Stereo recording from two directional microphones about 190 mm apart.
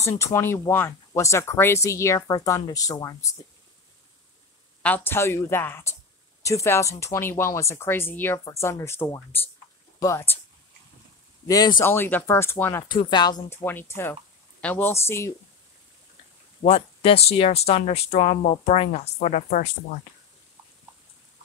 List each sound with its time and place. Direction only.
0.0 s speech: 15° left (ahead or behind)
4.8 s speech: 10° left (ahead or behind)
11.4 s speech: 20° left (ahead or behind)
12.8 s speech: 25° left (ahead or behind)
13.7 s speech: 10° left (ahead or behind)
16.6 s speech: 30° left (ahead or behind)